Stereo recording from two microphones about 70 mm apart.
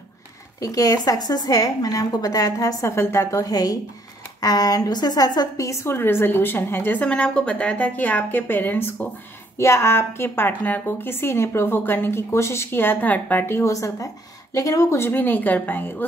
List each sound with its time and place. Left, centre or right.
0.6 s a woman's voice: left
2.8 s a woman's voice: left
3.3 s a woman's voice: left
5.9 s a woman's voice: left
7.0 s a woman's voice: centre; by 8.9 s left
9.6 s a woman's voice: left
13.7 s a woman's voice: left